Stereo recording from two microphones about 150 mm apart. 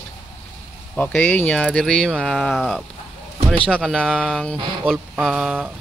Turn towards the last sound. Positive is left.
turn(degrees=-5)  # may be behind; listen again after turning